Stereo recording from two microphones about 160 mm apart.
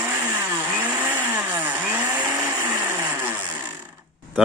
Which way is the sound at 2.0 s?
20° right (ahead or behind).